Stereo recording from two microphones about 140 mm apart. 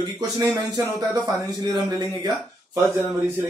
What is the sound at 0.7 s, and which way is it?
Speech, 25° right (ahead or behind).